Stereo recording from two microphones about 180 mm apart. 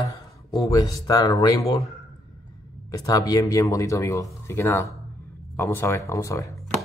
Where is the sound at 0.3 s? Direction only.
20° left (ahead or behind).